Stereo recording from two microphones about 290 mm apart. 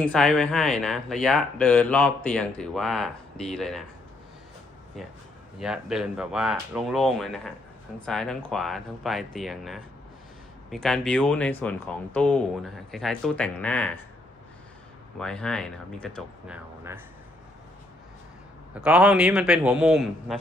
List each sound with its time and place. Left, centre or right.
0.0 s speech: centre
5.6 s speech: centre
15.1 s speech: centre
18.8 s speech: centre